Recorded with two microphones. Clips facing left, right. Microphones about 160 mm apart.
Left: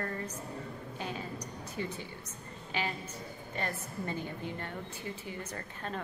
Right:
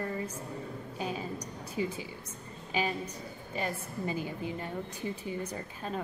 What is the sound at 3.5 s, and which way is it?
A woman's voice, 10° right (ahead or behind).